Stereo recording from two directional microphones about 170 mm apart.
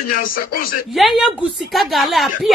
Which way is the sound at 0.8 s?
Centre (ahead or behind).